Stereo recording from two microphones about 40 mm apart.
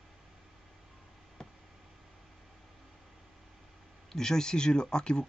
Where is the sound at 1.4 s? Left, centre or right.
Centre.